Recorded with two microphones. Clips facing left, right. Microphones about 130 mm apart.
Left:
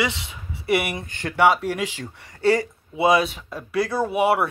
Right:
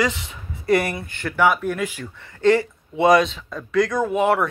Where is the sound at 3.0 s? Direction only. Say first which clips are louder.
Right 3 dB; 5° left (ahead or behind).